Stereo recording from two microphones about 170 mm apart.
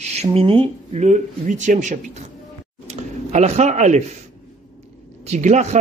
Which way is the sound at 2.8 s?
40° right (ahead or behind).